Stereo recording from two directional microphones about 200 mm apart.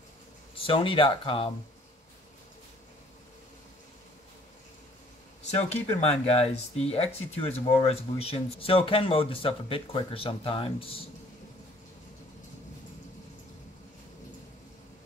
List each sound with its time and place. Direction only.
0.7 s speech: 25° left (ahead or behind)
5.5 s speech: 35° left (ahead or behind)